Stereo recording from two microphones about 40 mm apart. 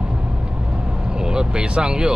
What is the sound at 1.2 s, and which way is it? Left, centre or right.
Speech, centre.